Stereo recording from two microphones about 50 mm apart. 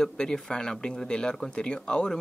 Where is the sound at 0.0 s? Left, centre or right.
Centre.